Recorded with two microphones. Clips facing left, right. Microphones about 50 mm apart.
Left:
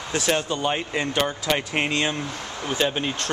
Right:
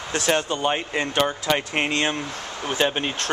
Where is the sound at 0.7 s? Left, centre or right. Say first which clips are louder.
Right 1 dB; centre.